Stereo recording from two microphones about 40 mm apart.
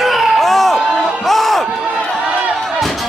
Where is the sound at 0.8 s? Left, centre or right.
Centre.